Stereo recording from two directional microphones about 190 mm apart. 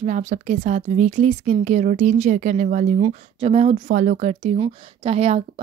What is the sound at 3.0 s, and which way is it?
Speech, 30° right (ahead or behind).